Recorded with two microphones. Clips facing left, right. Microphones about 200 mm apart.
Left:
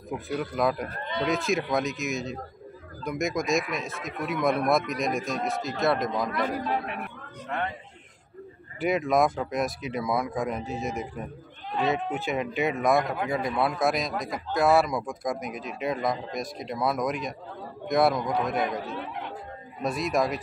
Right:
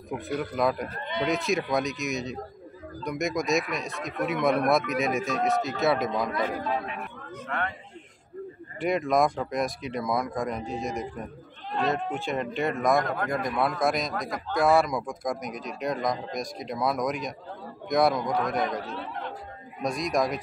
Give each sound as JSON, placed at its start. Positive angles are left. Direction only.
{"t": 0.1, "sound": "speech", "side_deg": 0}
{"t": 7.4, "sound": "a man's voice", "side_deg": 20}
{"t": 8.7, "sound": "speech", "side_deg": 0}